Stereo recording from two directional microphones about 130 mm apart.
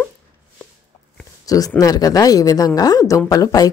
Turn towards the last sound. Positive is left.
turn(degrees=30)  # may be behind; listen again after turning